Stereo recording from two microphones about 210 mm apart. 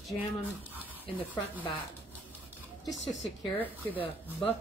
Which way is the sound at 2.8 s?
Centre (ahead or behind).